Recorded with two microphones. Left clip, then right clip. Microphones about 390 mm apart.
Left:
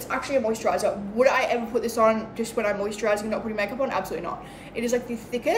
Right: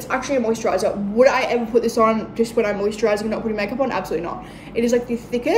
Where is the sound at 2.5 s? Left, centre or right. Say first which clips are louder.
Right 3 dB; centre.